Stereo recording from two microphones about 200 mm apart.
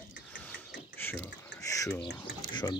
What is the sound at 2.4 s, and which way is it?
Speech, 20° left (ahead or behind).